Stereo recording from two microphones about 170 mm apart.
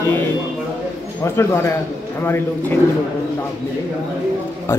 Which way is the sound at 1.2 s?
15° left (ahead or behind).